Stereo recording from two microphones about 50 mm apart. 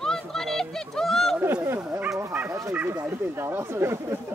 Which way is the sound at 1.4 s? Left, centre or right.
Right.